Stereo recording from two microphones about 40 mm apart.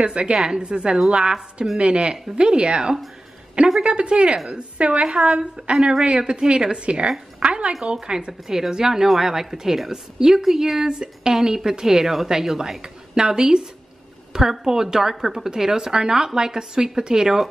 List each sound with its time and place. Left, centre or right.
0.0 s a woman's voice: right
0.3 s a woman's voice: centre
0.6 s a woman's voice: right